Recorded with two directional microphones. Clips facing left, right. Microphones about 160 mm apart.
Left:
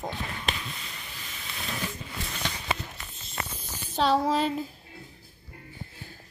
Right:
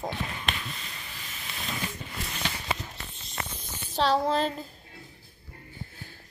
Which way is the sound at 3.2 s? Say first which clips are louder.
Left 2 dB; centre (ahead or behind).